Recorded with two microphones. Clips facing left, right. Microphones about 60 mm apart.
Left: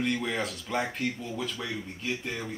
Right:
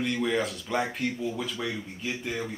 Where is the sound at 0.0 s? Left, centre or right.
Centre.